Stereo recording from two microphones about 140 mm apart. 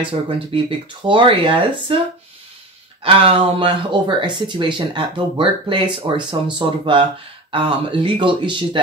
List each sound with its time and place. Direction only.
0.0 s speech: 40° right (ahead or behind)
3.0 s speech: 40° right (ahead or behind)